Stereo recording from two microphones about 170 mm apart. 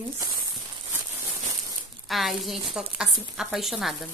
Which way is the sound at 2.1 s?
Centre (ahead or behind).